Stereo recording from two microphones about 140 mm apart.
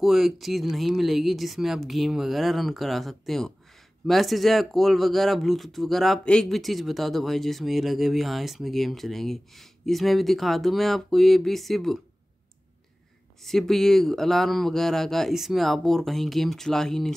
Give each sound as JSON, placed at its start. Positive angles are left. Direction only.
{"t": 0.0, "sound": "speech", "side_deg": 0}
{"t": 13.4, "sound": "speech", "side_deg": 0}